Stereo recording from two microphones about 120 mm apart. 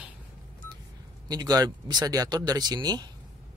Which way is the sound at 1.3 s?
35° right (ahead or behind).